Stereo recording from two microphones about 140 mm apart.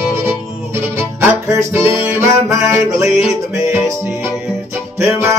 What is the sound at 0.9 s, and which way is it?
Music, 20° right (ahead or behind).